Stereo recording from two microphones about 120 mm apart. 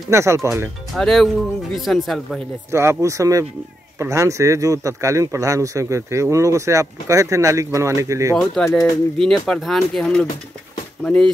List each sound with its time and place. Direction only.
0.1 s speech: 25° right (ahead or behind)
0.9 s speech: centre (ahead or behind)
2.7 s speech: 20° right (ahead or behind)
8.6 s speech: 30° left (ahead or behind)
9.2 s speech: 5° left (ahead or behind)